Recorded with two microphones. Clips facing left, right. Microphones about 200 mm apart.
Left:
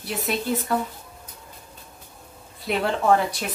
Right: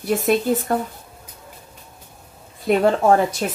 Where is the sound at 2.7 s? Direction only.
50° right (ahead or behind).